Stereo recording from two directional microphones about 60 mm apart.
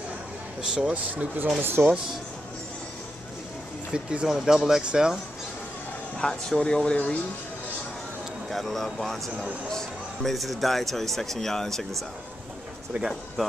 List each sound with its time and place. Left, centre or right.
0.6 s speech: centre
1.1 s speech: right
3.9 s speech: centre
4.3 s speech: centre
6.1 s speech: centre
8.5 s speech: centre
12.9 s speech: right
13.4 s speech: centre